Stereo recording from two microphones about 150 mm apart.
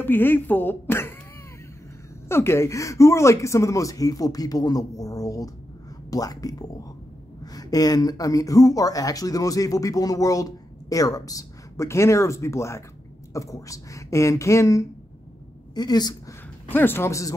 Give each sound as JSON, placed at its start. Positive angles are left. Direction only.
{"t": 0.0, "sound": "speech", "side_deg": 15}
{"t": 2.2, "sound": "a woman's voice", "side_deg": 15}
{"t": 16.7, "sound": "speech", "side_deg": 15}